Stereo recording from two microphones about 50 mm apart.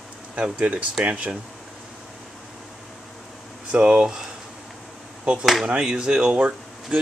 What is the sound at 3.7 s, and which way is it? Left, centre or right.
Speech, right.